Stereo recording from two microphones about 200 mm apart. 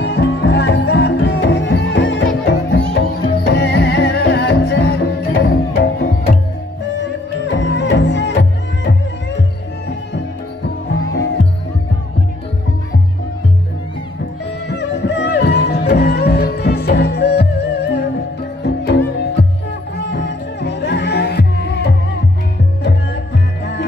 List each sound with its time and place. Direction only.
0.0 s music: 60° left (ahead or behind)
7.4 s music: 60° left (ahead or behind)
14.7 s music: 60° left (ahead or behind)
23.6 s music: 60° left (ahead or behind)